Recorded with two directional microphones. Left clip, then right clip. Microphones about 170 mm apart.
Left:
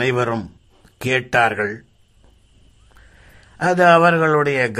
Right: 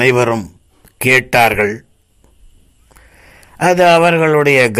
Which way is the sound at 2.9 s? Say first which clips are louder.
Right 6 dB; 20° right (ahead or behind).